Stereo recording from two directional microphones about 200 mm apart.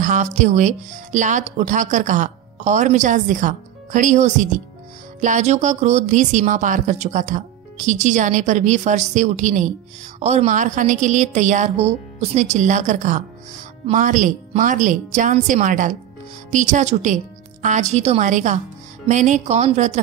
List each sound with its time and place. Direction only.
0.0 s speech: 40° right (ahead or behind)